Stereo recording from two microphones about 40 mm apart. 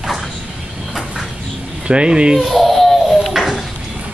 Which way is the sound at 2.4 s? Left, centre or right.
Centre.